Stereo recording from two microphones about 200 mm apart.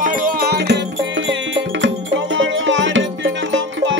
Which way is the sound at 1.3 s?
70° right (ahead or behind).